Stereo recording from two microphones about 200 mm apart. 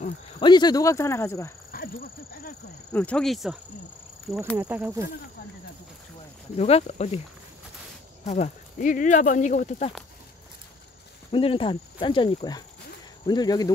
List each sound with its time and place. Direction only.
0.4 s speech: 20° left (ahead or behind)
1.7 s a sound: 45° left (ahead or behind)
2.9 s speech: 5° left (ahead or behind)
4.6 s speech: 10° right (ahead or behind)
6.5 s speech: 30° left (ahead or behind)
8.3 s speech: 35° left (ahead or behind)
11.3 s speech: 25° left (ahead or behind)